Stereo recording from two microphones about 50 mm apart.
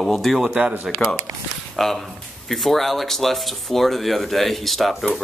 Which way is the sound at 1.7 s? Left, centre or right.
Centre.